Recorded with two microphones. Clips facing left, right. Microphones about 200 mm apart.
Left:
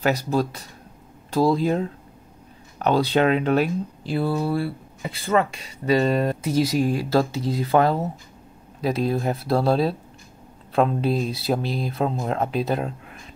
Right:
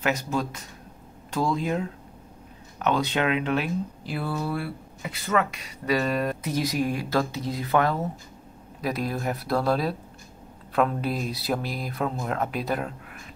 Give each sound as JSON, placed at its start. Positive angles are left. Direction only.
{"t": 0.0, "sound": "speech", "side_deg": 35}